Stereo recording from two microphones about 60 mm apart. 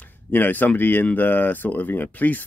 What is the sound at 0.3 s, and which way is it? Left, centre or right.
Speech, left.